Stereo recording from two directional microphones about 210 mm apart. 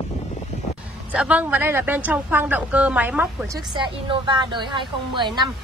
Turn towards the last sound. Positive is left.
turn(degrees=-20)  # may be behind; listen again after turning